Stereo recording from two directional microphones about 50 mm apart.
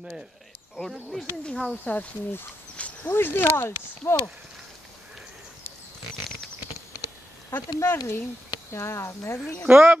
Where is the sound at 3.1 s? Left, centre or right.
Left.